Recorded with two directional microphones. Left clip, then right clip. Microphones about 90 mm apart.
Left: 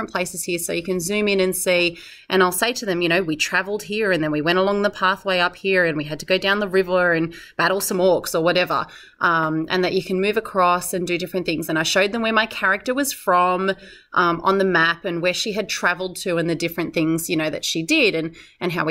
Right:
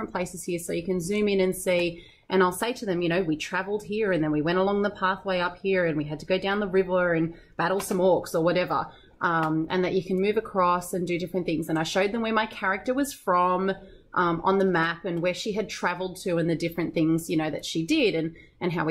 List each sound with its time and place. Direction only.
0.0 s a woman's voice: 10° left (ahead or behind)